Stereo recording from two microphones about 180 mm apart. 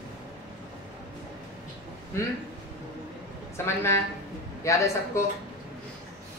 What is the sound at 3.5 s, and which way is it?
Speech, 15° left (ahead or behind).